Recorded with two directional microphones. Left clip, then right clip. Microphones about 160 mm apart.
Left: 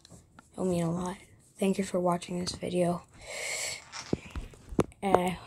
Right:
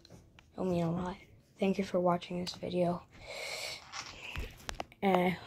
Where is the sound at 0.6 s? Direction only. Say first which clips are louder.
Left 3 dB; 20° left (ahead or behind).